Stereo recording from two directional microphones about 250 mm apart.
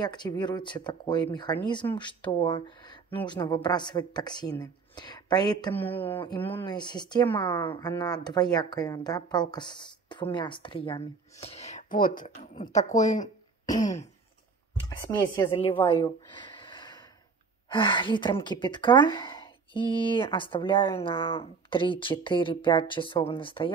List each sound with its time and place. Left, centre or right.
0.0 s speech: centre
14.9 s speech: centre
15.8 s a sound: centre
17.6 s speech: centre